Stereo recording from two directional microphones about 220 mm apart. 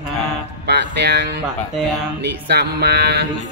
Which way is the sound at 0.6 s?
50° right (ahead or behind).